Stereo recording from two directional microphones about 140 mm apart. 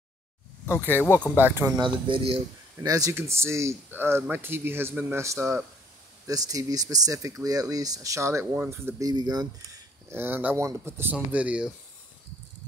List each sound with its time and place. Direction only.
0.9 s speech: 15° left (ahead or behind)
1.4 s speech: 20° right (ahead or behind)
1.8 s speech: 35° right (ahead or behind)
2.8 s speech: 25° right (ahead or behind)
9.0 s speech: 30° right (ahead or behind)
10.1 s speech: 15° right (ahead or behind)